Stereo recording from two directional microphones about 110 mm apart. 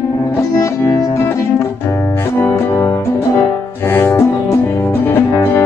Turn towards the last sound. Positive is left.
turn(degrees=20)  # may be behind; listen again after turning